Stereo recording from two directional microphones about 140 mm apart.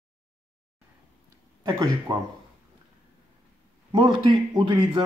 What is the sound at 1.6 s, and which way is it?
Speech, 25° right (ahead or behind).